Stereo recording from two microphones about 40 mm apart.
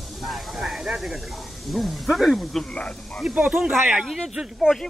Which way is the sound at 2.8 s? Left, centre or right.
Left.